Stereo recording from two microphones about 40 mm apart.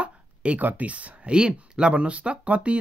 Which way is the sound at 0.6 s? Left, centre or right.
Right.